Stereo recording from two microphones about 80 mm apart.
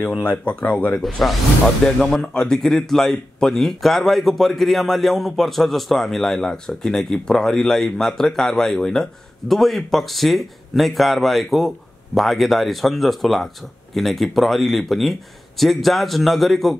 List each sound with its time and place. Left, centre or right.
0.3 s speech: centre
2.0 s speech: centre